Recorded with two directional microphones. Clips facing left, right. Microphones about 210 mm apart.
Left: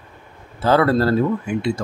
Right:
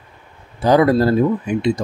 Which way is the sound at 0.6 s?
15° right (ahead or behind).